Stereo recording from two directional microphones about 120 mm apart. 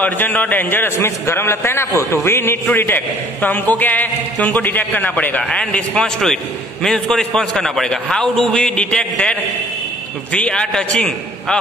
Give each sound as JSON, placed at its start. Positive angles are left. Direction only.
{"t": 0.0, "sound": "a man's voice", "side_deg": 15}